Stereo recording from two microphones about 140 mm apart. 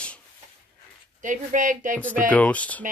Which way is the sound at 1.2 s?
65° right (ahead or behind).